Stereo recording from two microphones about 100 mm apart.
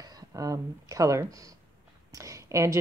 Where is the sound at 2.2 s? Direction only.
30° right (ahead or behind).